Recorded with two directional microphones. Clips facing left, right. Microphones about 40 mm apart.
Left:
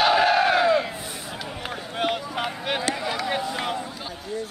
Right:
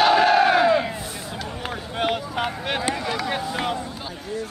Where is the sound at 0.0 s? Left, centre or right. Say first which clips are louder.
Right 3 dB; centre.